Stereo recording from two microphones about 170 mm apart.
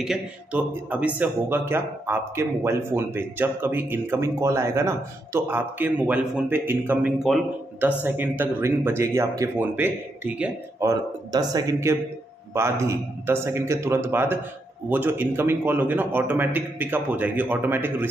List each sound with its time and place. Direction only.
0.0 s speech: 5° right (ahead or behind)
10.9 s speech: 20° right (ahead or behind)